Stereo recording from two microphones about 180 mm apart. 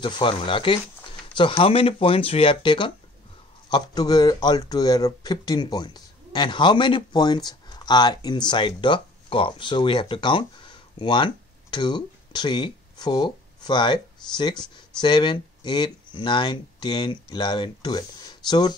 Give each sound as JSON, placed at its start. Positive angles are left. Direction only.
{"t": 0.0, "sound": "speech", "side_deg": 30}